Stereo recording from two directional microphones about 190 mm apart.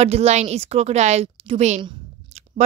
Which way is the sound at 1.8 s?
35° right (ahead or behind).